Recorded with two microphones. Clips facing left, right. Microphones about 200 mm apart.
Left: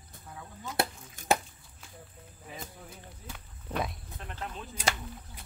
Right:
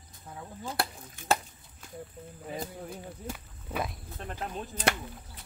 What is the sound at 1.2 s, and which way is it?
Chop, 40° left (ahead or behind).